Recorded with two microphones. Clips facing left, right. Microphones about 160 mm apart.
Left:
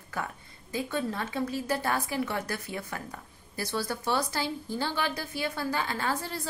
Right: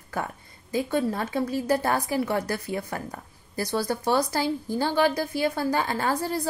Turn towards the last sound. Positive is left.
turn(degrees=-40)  # may be behind; listen again after turning